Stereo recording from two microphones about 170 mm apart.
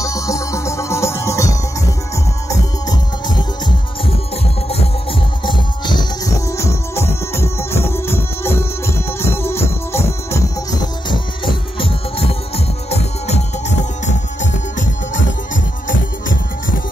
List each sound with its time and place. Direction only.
0.0 s music: 20° left (ahead or behind)
5.4 s music: 25° left (ahead or behind); by 14.9 s 45° left (ahead or behind)